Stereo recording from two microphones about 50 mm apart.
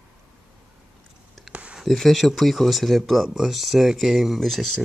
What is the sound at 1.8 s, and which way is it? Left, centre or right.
Speech, centre.